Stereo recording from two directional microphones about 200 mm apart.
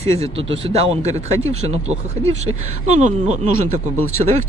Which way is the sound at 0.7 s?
35° right (ahead or behind).